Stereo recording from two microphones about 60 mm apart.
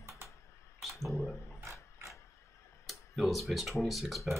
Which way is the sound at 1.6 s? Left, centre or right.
Right.